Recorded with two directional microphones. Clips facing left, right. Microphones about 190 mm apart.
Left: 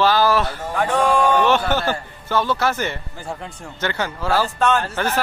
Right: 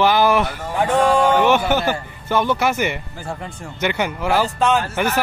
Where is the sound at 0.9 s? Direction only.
Centre (ahead or behind).